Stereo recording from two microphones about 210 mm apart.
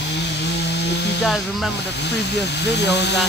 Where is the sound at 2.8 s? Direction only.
55° left (ahead or behind).